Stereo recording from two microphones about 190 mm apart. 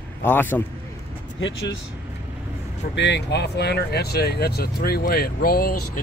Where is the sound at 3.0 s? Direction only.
65° left (ahead or behind).